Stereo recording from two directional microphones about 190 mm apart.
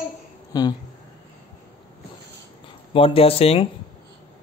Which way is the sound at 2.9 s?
30° left (ahead or behind).